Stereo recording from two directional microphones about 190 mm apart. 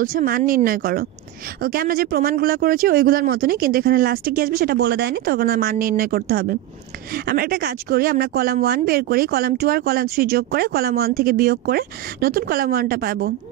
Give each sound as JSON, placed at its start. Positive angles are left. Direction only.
{"t": 0.0, "sound": "speech", "side_deg": -45}